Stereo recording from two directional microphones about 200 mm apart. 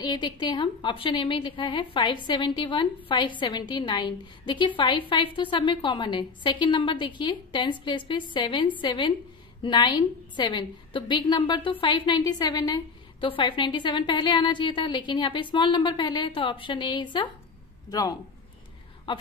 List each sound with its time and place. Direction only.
0.0 s a woman's voice: 25° left (ahead or behind)